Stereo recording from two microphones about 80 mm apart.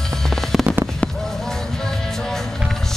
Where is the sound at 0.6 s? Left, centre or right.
Right.